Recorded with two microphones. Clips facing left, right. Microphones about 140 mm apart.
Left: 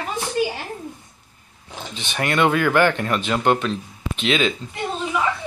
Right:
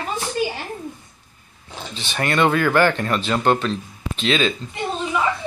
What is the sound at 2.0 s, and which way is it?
Speech, 15° left (ahead or behind).